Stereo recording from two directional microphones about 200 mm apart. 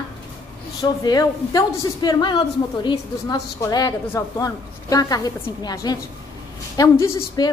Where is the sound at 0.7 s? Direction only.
20° left (ahead or behind).